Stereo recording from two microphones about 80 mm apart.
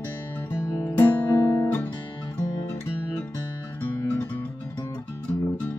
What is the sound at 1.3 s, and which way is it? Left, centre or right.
Guitar, left.